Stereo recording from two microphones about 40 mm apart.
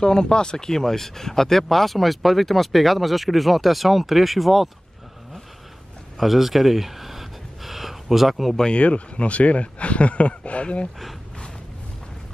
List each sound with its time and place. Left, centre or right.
0.0 s speech: centre
6.1 s a sound: centre
8.7 s speech: left